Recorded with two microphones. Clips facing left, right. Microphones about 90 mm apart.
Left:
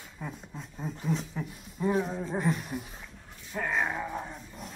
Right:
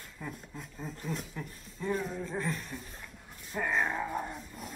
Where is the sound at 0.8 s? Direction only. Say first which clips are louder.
Left 7 dB; 5° left (ahead or behind).